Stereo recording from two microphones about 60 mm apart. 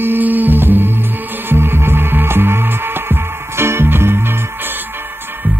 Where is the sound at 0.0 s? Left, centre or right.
Right.